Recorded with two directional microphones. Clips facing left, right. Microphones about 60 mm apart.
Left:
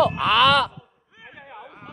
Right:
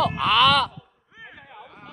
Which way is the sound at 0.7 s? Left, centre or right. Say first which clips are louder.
Right 1 dB; left.